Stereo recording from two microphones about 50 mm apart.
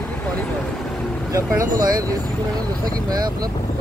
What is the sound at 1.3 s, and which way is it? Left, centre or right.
Speech, right.